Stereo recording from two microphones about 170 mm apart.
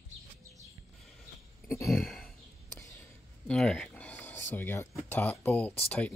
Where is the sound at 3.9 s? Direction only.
10° left (ahead or behind).